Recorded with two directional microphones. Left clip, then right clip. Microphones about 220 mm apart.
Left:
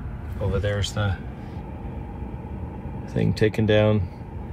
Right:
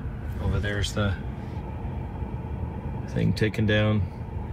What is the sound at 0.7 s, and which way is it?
Speech, 20° left (ahead or behind).